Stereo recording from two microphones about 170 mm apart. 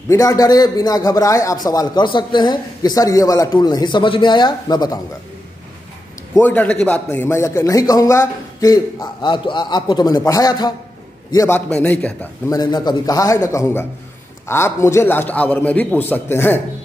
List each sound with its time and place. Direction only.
0.1 s a man's voice: 20° left (ahead or behind)
6.3 s a man's voice: 10° left (ahead or behind)
12.4 s a man's voice: 25° left (ahead or behind)